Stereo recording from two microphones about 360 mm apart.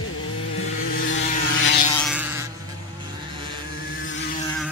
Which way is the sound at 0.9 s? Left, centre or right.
Left.